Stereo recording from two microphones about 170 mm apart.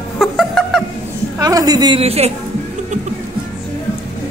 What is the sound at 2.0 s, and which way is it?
Speech, 35° right (ahead or behind).